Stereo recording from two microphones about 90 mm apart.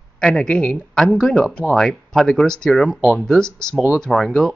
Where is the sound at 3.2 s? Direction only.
5° left (ahead or behind).